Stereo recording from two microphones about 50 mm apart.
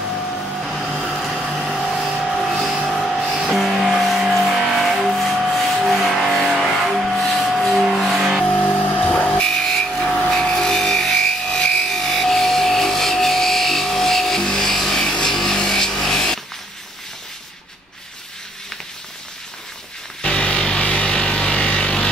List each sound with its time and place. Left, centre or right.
0.9 s vehicle: centre
1.7 s a sound: centre
2.1 s printer: centre
2.9 s vehicle: centre
8.7 s music: left
9.4 s a sound: centre
10.3 s music: centre
20.2 s music: centre